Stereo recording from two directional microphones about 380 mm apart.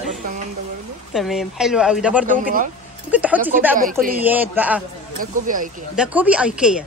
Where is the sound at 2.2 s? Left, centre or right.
Right.